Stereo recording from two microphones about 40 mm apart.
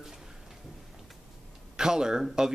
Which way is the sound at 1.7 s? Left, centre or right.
Centre.